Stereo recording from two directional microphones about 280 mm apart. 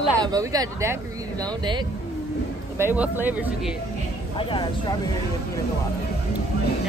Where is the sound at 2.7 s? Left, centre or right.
Centre.